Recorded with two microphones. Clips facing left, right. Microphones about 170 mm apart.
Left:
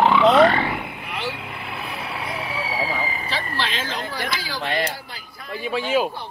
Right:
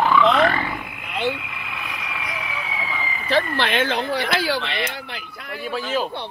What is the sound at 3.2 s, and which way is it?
Speech, 55° right (ahead or behind).